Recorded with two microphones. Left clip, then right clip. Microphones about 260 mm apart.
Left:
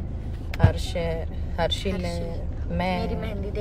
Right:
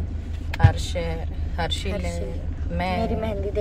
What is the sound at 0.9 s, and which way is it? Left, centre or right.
Speech, centre.